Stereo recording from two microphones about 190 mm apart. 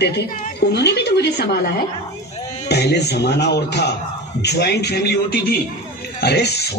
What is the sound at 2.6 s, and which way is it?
Speech, 60° left (ahead or behind).